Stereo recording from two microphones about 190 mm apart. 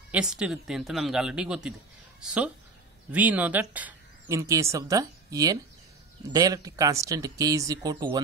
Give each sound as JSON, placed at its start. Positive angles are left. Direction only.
{"t": 0.1, "sound": "speech", "side_deg": -5}